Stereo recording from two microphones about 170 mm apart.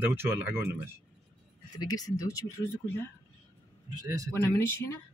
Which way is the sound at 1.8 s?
20° left (ahead or behind).